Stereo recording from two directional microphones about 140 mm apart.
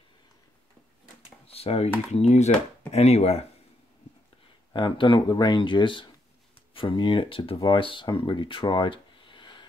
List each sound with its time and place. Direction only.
1.5 s speech: 45° left (ahead or behind)
4.7 s speech: 35° left (ahead or behind)